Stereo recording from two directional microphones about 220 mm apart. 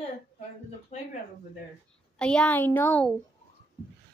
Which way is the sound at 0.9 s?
30° left (ahead or behind).